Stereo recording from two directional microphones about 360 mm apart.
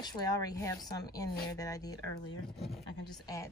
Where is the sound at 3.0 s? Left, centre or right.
Centre.